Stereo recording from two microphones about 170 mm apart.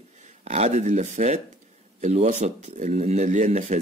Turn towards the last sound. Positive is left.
turn(degrees=-45)  # may be behind; listen again after turning